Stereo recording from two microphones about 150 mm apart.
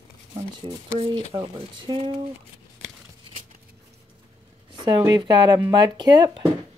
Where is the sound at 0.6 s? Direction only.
35° right (ahead or behind).